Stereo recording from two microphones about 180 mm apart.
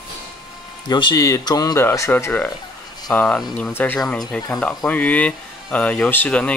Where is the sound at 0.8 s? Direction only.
25° left (ahead or behind).